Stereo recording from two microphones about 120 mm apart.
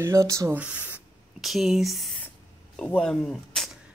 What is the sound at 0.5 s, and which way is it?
Speech, 15° right (ahead or behind).